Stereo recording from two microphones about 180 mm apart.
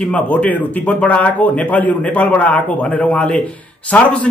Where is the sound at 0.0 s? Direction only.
5° left (ahead or behind).